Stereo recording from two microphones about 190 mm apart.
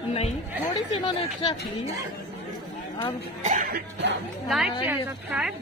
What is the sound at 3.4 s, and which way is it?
Speech, 45° right (ahead or behind).